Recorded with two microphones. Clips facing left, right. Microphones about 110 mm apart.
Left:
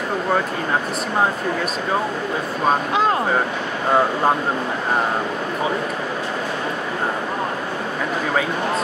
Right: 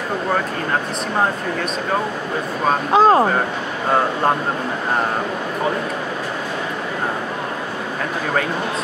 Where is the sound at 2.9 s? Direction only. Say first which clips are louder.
Right 6 dB; 35° right (ahead or behind).